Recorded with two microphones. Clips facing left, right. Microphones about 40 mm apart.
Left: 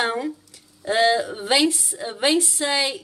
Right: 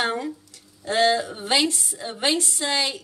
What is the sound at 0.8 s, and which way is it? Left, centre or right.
A woman's voice, centre.